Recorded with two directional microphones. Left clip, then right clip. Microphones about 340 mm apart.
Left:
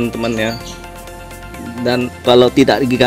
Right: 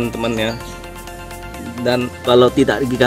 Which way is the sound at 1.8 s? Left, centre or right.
Centre.